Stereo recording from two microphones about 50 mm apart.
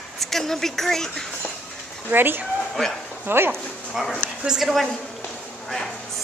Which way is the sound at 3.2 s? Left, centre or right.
Right.